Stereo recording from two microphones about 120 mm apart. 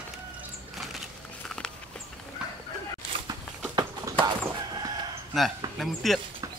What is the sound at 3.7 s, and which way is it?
Chicken, 30° right (ahead or behind).